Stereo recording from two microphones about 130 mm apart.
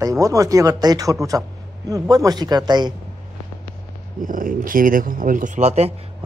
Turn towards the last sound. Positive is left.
turn(degrees=-55)  # may be behind; listen again after turning